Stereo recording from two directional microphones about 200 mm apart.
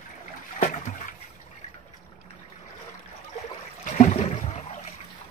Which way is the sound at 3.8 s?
35° left (ahead or behind).